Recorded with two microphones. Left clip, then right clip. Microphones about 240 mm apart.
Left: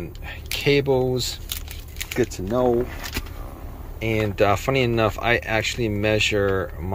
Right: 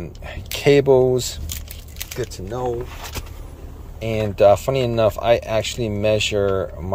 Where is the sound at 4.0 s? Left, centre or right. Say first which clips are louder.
Right 3 dB; centre.